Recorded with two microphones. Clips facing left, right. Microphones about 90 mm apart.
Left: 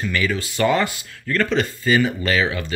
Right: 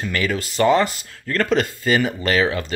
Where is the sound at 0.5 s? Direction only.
30° right (ahead or behind).